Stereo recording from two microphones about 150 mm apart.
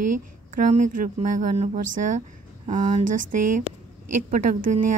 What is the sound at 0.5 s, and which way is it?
Speech, 55° right (ahead or behind).